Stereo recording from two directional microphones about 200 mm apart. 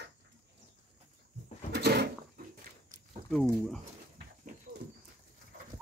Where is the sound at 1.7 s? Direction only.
55° right (ahead or behind).